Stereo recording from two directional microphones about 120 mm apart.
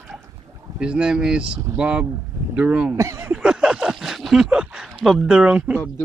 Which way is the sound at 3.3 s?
5° right (ahead or behind).